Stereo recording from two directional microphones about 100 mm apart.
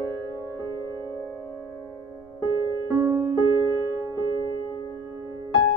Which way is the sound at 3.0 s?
25° right (ahead or behind).